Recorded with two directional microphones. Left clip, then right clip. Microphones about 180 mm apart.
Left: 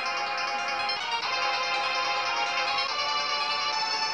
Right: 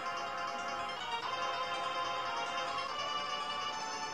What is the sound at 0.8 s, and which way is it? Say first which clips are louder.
Music: left 9 dB; 25° left (ahead or behind).